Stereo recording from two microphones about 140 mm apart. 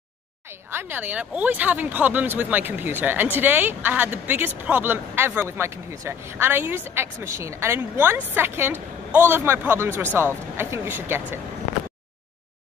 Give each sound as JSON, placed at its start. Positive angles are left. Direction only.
{"t": 0.5, "sound": "speech", "side_deg": -15}